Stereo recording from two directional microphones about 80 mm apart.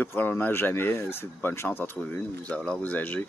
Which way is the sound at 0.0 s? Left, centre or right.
Left.